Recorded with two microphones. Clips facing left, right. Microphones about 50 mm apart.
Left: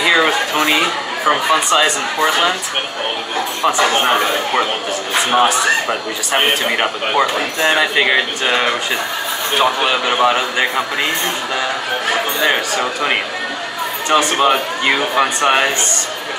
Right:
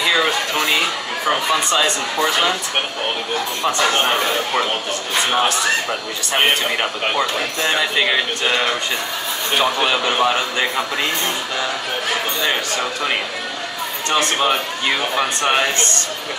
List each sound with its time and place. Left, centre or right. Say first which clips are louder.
0.0 s a sound: left 4 dB; centre
2.1 s a man's voice: left 3 dB; centre
3.6 s a man's voice: left 4 dB; centre
12.1 s a man's voice: left 5 dB; centre
14.3 s a man's voice: left 4 dB; centre